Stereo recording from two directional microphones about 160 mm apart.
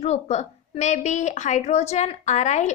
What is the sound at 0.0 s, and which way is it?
A woman's voice, 45° left (ahead or behind).